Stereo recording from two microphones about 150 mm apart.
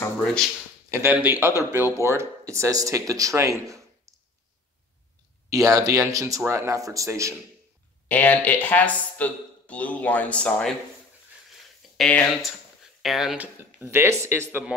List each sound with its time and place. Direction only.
0.8 s speech: 15° right (ahead or behind)
3.6 s a sound: 20° right (ahead or behind)
5.5 s speech: 25° right (ahead or behind)
8.1 s speech: 10° left (ahead or behind)
12.0 s speech: centre (ahead or behind)
13.8 s speech: 15° right (ahead or behind)